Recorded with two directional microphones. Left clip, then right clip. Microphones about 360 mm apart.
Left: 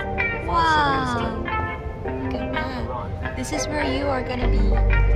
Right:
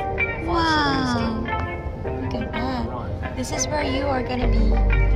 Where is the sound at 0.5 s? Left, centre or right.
Centre.